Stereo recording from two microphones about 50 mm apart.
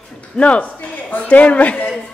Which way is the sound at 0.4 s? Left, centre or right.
Left.